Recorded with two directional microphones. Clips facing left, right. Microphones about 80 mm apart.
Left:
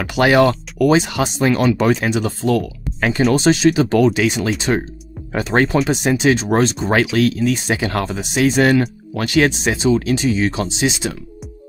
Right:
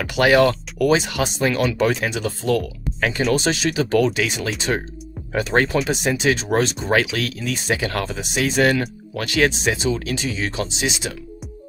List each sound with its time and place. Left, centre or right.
0.0 s speech: left
3.3 s speech: left